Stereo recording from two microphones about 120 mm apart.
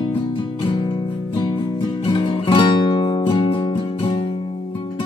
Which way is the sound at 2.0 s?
45° left (ahead or behind).